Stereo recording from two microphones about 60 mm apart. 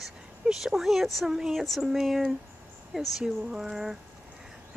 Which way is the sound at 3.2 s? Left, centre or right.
Centre.